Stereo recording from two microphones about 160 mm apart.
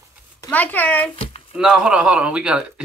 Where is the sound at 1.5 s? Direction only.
5° right (ahead or behind).